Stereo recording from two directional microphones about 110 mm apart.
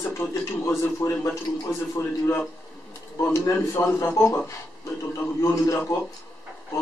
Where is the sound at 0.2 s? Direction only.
25° left (ahead or behind).